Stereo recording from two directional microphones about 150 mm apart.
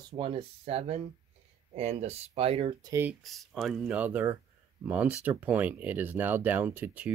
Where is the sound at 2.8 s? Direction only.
15° right (ahead or behind).